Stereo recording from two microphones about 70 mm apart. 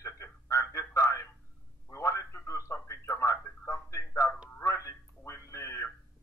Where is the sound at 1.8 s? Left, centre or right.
Left.